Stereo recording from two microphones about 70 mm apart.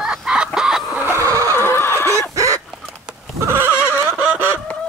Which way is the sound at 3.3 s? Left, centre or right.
Right.